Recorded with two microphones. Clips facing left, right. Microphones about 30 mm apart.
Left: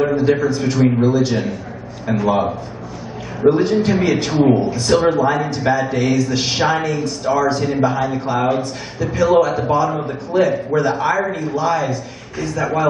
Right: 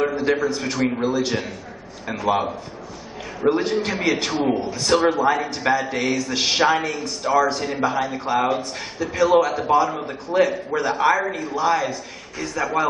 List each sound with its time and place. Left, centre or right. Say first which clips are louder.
0.0 s a sound: left 5 dB; centre
0.4 s a man's voice: left 6 dB; centre
3.4 s a man's voice: left 6 dB; centre